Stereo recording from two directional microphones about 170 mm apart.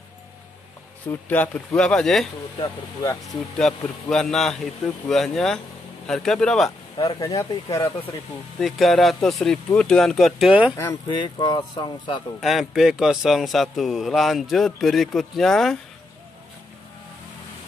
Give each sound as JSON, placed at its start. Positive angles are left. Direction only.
{"t": 1.0, "sound": "speech", "side_deg": 10}
{"t": 2.6, "sound": "speech", "side_deg": 20}
{"t": 3.5, "sound": "a man's voice", "side_deg": 5}
{"t": 7.0, "sound": "speech", "side_deg": 20}
{"t": 8.5, "sound": "a man's voice", "side_deg": 0}
{"t": 11.1, "sound": "speech", "side_deg": 25}
{"t": 12.4, "sound": "a man's voice", "side_deg": 0}